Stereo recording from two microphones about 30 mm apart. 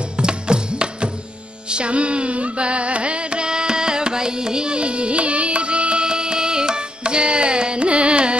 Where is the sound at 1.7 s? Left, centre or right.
Right.